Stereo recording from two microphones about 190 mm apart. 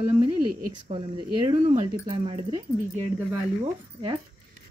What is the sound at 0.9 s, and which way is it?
Speech, 30° right (ahead or behind).